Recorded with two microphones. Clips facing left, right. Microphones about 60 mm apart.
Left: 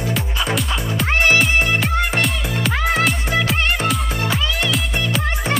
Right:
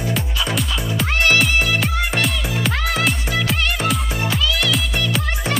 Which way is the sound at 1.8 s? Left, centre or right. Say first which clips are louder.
Left 1 dB; centre.